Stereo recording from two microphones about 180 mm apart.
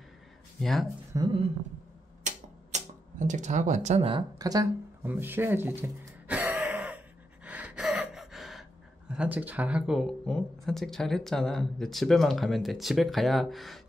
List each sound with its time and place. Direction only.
0.6 s speech: centre (ahead or behind)
1.1 s speech: 25° right (ahead or behind)
2.2 s a sound: 40° right (ahead or behind)
4.4 s speech: 20° right (ahead or behind)
5.0 s a sound: 10° right (ahead or behind)
7.4 s gasp: 5° right (ahead or behind)
9.1 s speech: 5° right (ahead or behind)